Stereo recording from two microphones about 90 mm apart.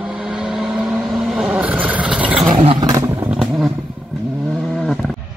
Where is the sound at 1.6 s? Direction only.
15° right (ahead or behind).